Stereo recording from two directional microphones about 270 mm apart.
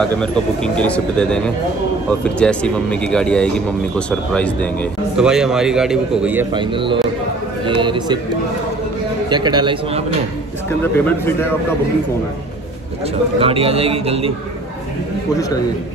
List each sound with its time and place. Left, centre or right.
0.7 s speech: centre
6.5 s a man's voice: centre
9.3 s a man's voice: centre
10.8 s speech: centre
13.4 s a man's voice: right